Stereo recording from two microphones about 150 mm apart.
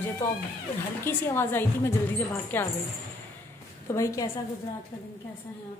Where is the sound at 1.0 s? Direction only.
15° left (ahead or behind).